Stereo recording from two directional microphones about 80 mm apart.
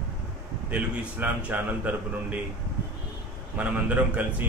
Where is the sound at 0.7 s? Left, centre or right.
Centre.